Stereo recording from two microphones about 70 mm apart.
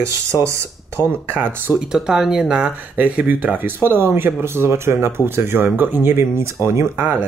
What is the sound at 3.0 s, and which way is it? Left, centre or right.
Speech, right.